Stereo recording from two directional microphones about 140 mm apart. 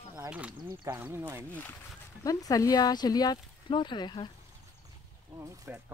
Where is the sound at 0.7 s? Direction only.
30° right (ahead or behind).